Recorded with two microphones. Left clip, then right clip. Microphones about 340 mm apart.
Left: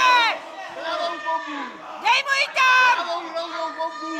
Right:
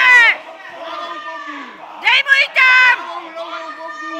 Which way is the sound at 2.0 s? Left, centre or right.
Centre.